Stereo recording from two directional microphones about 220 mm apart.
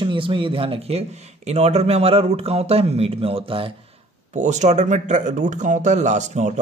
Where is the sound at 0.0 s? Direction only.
25° right (ahead or behind).